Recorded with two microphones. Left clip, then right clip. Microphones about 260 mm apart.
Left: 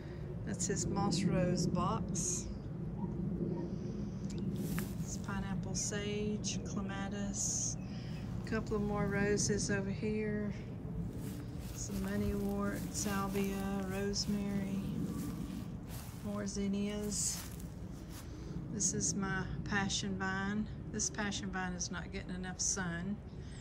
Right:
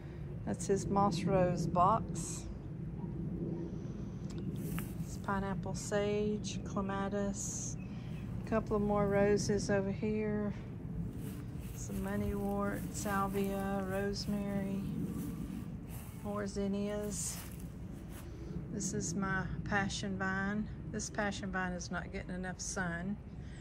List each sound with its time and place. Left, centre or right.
0.5 s a woman's voice: centre
5.2 s a woman's voice: centre
12.1 s a woman's voice: centre
16.3 s a woman's voice: centre
18.8 s a woman's voice: centre